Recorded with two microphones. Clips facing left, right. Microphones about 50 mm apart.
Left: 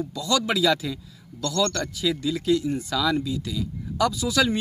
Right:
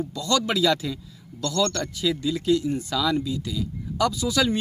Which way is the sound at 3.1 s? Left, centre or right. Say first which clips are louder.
Even; centre.